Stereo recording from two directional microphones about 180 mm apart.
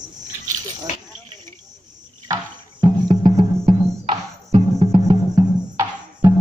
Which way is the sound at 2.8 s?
25° right (ahead or behind).